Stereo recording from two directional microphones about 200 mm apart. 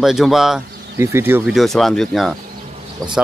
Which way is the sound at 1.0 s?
10° right (ahead or behind).